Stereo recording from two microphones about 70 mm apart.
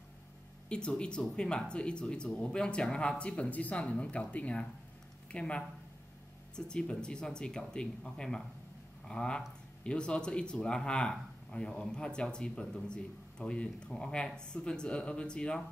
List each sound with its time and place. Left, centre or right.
0.7 s speech: centre